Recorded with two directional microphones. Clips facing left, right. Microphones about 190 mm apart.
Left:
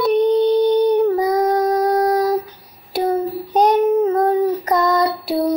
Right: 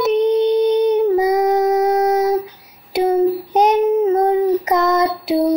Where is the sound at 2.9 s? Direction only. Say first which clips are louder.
Right 4 dB; 25° right (ahead or behind).